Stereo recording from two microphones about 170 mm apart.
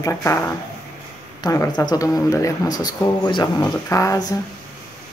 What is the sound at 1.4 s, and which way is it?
Speech, 20° left (ahead or behind).